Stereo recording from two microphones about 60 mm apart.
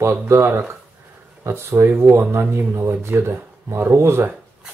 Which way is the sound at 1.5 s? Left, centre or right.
Right.